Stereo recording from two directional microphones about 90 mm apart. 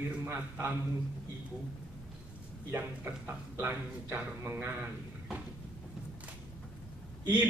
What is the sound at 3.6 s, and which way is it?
Speech, 20° right (ahead or behind).